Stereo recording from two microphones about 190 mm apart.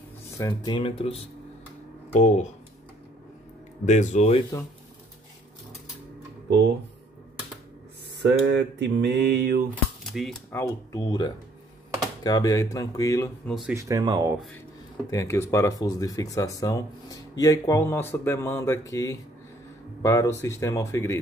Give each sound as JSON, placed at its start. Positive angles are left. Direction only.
{"t": 0.4, "sound": "speech", "side_deg": 20}
{"t": 2.1, "sound": "speech", "side_deg": 35}
{"t": 3.8, "sound": "speech", "side_deg": 40}
{"t": 8.2, "sound": "mantra", "side_deg": -65}
{"t": 10.0, "sound": "typewriter", "side_deg": 0}
{"t": 10.5, "sound": "speech", "side_deg": 20}
{"t": 13.5, "sound": "speech", "side_deg": 0}
{"t": 13.7, "sound": "speech", "side_deg": -20}
{"t": 15.0, "sound": "speech", "side_deg": 15}